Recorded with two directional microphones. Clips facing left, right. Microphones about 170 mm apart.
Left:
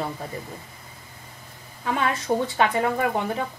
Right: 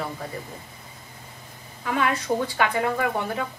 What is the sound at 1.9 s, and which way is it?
A woman's voice, 25° left (ahead or behind).